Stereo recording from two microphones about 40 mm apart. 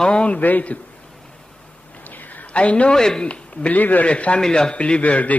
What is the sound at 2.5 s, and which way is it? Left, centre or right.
Speech, left.